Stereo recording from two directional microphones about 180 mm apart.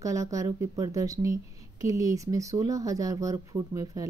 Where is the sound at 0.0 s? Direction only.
20° right (ahead or behind).